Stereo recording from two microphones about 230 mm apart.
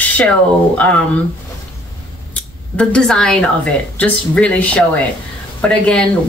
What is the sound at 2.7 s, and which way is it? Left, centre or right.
Speech, centre.